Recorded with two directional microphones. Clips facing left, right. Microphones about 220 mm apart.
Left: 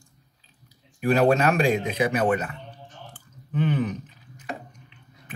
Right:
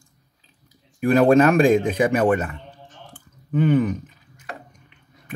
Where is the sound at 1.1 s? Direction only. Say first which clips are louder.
Right 5 dB; 50° right (ahead or behind).